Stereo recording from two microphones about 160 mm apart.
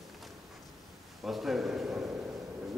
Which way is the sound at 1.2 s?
Centre (ahead or behind).